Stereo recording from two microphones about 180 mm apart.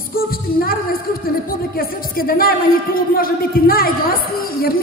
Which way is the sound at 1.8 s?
55° left (ahead or behind).